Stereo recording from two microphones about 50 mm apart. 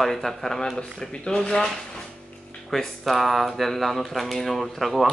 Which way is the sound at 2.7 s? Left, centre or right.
Centre.